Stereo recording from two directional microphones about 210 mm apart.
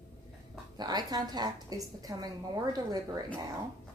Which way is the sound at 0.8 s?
20° right (ahead or behind).